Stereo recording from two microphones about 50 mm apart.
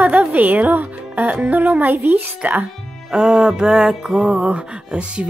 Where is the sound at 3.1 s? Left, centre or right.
Centre.